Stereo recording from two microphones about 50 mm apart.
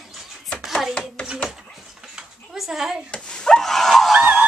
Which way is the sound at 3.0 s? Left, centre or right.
Centre.